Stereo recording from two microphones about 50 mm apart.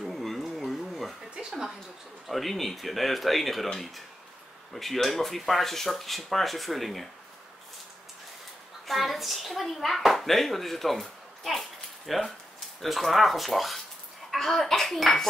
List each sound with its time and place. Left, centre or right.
0.0 s a sound: centre
2.2 s a child's voice: centre
8.8 s a child's voice: centre